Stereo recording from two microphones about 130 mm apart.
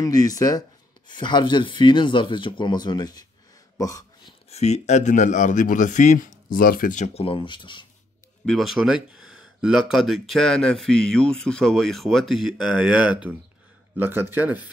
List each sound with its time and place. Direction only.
0.0 s speech: 30° left (ahead or behind)
3.7 s a sound: 25° left (ahead or behind)
4.5 s speech: 55° left (ahead or behind); by 7.1 s 85° left
7.2 s speech: 45° left (ahead or behind)
8.5 s a man's voice: centre (ahead or behind)